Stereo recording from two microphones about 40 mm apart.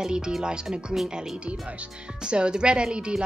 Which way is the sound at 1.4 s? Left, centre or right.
Right.